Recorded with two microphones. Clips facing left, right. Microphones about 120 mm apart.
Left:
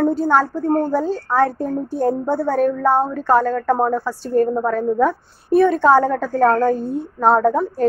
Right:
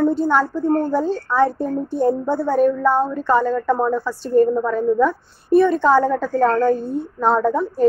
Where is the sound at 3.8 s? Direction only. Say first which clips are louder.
Left 1 dB; 40° left (ahead or behind).